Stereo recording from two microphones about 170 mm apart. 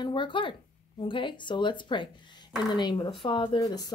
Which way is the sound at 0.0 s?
30° left (ahead or behind).